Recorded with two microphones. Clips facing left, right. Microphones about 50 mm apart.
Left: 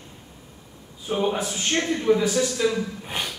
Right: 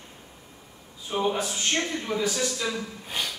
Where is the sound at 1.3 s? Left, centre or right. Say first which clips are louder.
Left 2 dB; left.